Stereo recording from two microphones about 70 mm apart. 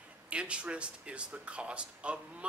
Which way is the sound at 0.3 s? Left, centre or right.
Centre.